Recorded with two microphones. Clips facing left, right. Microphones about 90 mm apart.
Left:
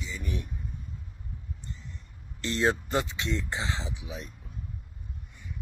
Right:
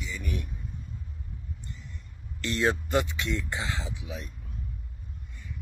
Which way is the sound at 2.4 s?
25° left (ahead or behind).